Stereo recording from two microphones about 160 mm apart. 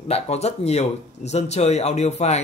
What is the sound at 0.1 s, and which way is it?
Speech, 40° left (ahead or behind).